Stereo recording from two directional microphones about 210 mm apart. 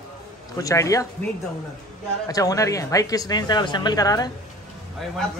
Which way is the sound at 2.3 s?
15° left (ahead or behind).